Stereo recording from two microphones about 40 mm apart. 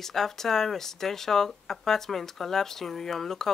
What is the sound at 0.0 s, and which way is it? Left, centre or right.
Speech, centre.